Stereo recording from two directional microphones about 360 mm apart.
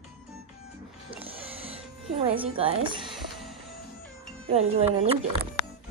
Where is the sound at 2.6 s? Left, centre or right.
Centre.